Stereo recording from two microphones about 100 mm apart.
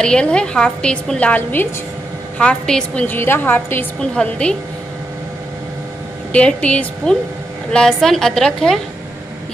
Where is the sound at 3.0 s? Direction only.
20° left (ahead or behind).